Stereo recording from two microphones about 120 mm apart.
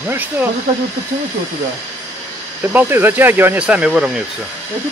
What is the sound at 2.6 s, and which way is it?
Speech, 15° right (ahead or behind).